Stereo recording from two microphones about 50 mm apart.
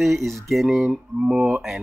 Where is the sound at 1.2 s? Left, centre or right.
Centre.